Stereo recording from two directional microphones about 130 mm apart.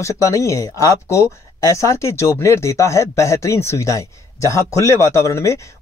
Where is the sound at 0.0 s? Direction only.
25° left (ahead or behind).